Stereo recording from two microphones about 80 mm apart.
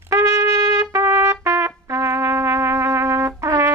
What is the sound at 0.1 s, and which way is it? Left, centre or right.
Trumpet, right.